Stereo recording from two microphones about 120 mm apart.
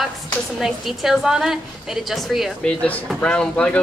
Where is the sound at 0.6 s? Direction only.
5° right (ahead or behind).